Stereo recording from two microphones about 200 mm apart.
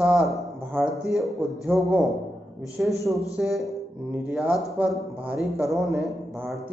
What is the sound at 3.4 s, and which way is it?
A man's voice, centre (ahead or behind).